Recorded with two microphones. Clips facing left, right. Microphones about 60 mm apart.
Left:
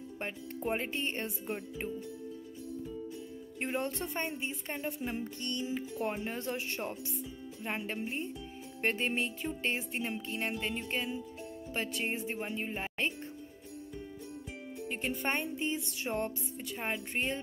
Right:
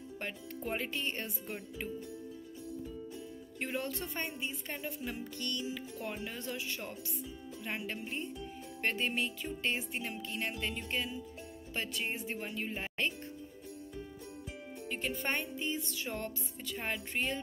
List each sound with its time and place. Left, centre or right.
0.3 s speech: centre
0.7 s music: left
3.5 s music: left
14.9 s music: left
16.7 s speech: centre
17.1 s music: left